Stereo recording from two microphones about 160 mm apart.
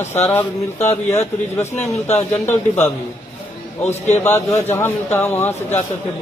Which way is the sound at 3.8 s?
45° left (ahead or behind).